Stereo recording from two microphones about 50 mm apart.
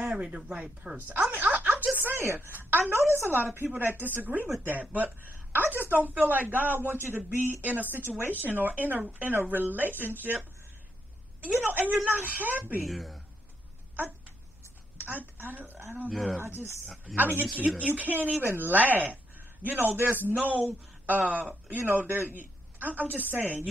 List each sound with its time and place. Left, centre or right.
0.0 s speech: right
0.9 s speech: right
1.3 s music: right
2.0 s a woman's voice: right
11.6 s a woman's voice: right
12.8 s speech: centre
15.0 s a woman's voice: right
16.1 s speech: centre
16.3 s a woman's voice: right
21.2 s a woman's voice: right